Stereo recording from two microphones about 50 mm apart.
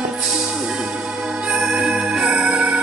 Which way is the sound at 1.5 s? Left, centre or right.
Centre.